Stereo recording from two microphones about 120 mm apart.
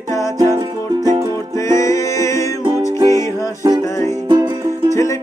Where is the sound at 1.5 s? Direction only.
25° left (ahead or behind).